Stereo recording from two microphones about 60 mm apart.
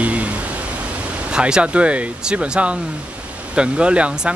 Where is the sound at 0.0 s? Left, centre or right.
Right.